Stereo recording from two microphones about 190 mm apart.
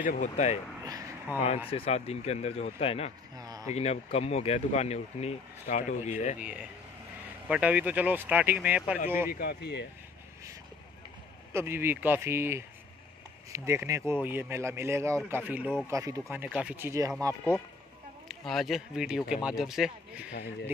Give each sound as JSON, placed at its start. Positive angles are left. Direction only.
{"t": 0.0, "sound": "speech", "side_deg": 40}
{"t": 0.8, "sound": "a sound", "side_deg": -20}
{"t": 1.7, "sound": "speech", "side_deg": 30}
{"t": 3.3, "sound": "speech", "side_deg": -20}
{"t": 3.7, "sound": "speech", "side_deg": 35}
{"t": 6.4, "sound": "speech", "side_deg": -5}
{"t": 9.3, "sound": "speech", "side_deg": 55}
{"t": 11.5, "sound": "speech", "side_deg": -10}
{"t": 18.3, "sound": "speech", "side_deg": 0}